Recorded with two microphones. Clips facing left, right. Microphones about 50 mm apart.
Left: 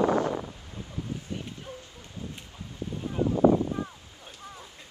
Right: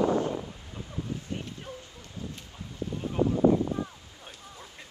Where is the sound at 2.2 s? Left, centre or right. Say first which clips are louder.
Even; left.